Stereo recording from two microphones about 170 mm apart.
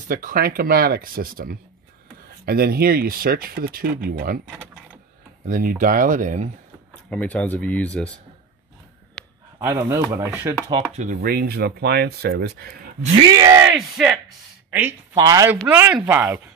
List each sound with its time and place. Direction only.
0.1 s speech: 55° right (ahead or behind)
5.5 s speech: 55° right (ahead or behind)
7.1 s speech: 5° left (ahead or behind)
9.2 s a sound: 5° left (ahead or behind)
9.6 s speech: 15° right (ahead or behind)
10.9 s speech: 45° right (ahead or behind)
11.1 s speech: 65° right (ahead or behind)
13.2 s a sound: 25° right (ahead or behind)
13.7 s speech: 5° right (ahead or behind); by 15.5 s 20° right (ahead or behind)
15.7 s speech: 10° right (ahead or behind)